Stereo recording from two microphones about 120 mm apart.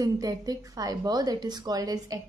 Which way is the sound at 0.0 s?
30° right (ahead or behind).